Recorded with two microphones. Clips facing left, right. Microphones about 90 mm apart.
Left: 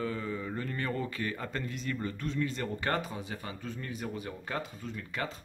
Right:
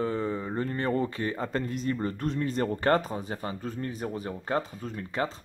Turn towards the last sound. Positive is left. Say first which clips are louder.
# right 6 dB
turn(degrees=-35)  # may be behind; listen again after turning